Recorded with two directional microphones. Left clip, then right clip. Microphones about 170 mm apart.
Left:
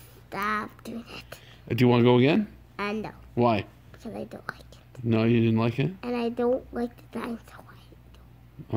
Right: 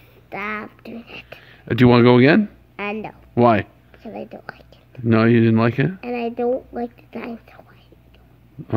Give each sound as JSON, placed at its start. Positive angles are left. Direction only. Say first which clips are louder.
{"t": 0.3, "sound": "a woman's voice", "louder": "right 1 dB", "side_deg": 0}
{"t": 1.4, "sound": "speech", "louder": "right 8 dB", "side_deg": -35}
{"t": 2.7, "sound": "a woman's voice", "louder": "right 2 dB", "side_deg": -5}
{"t": 3.3, "sound": "speech", "louder": "right 9 dB", "side_deg": -45}
{"t": 4.0, "sound": "a woman's voice", "louder": "right 4 dB", "side_deg": -5}
{"t": 5.0, "sound": "speech", "louder": "right 8 dB", "side_deg": -50}
{"t": 5.9, "sound": "a woman's voice", "louder": "right 4 dB", "side_deg": 0}